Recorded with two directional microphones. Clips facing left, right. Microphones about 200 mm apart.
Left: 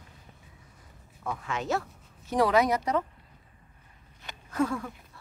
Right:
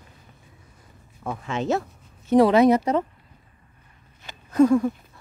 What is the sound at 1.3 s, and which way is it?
Speech, 25° right (ahead or behind).